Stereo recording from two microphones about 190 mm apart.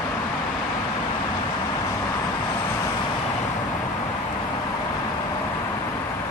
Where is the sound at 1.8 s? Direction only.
15° left (ahead or behind).